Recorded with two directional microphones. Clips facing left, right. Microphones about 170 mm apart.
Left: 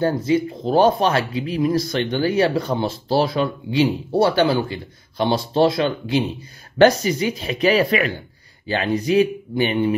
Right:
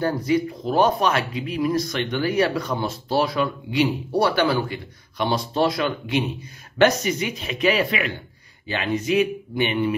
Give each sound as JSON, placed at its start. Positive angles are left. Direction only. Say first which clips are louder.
{"t": 0.0, "sound": "speech", "louder": "left 3 dB", "side_deg": 25}